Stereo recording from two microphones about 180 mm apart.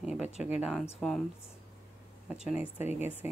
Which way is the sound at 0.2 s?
40° left (ahead or behind).